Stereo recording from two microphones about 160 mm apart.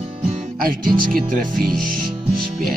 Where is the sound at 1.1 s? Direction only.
55° right (ahead or behind).